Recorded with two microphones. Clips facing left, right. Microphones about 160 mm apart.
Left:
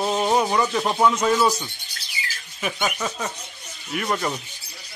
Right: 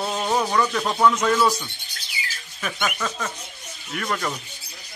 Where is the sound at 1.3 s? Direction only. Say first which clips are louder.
Even; 25° left (ahead or behind).